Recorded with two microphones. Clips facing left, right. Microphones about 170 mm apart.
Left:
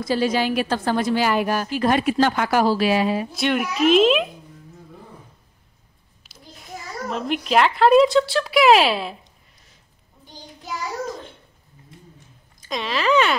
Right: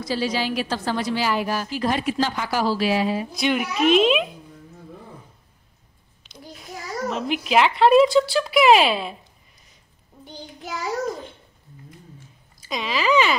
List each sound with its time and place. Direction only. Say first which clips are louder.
0.0 s a woman's voice: left 4 dB; 50° left (ahead or behind)
3.3 s a woman's voice: left 1 dB; centre (ahead or behind)
6.2 s a sound: right 6 dB; 5° left (ahead or behind)
7.1 s a woman's voice: left 1 dB; centre (ahead or behind)
12.6 s a woman's voice: left 1 dB; 5° right (ahead or behind)